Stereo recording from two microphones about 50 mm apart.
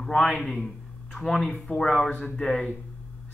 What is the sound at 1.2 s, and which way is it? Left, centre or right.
Speech, centre.